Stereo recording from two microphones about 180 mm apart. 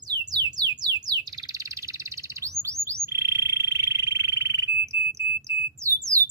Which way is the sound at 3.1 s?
15° right (ahead or behind).